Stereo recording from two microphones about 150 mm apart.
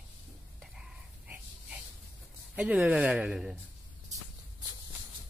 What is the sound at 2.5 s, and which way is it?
Speech, 10° right (ahead or behind).